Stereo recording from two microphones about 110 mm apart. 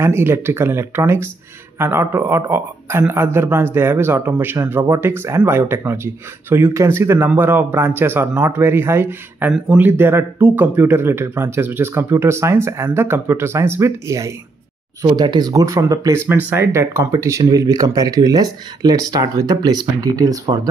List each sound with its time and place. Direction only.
0.0 s speech: 20° right (ahead or behind)
15.0 s speech: 40° right (ahead or behind)
16.3 s speech: 15° right (ahead or behind); by 20.6 s 35° right (ahead or behind)